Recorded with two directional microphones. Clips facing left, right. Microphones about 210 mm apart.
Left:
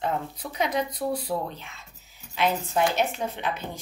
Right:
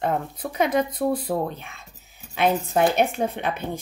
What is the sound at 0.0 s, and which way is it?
A woman's voice, 50° right (ahead or behind).